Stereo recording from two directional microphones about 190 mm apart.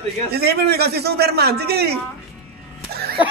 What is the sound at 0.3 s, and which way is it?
A man's voice, 55° right (ahead or behind).